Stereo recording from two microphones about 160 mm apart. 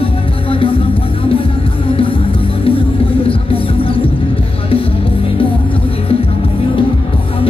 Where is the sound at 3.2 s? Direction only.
35° left (ahead or behind).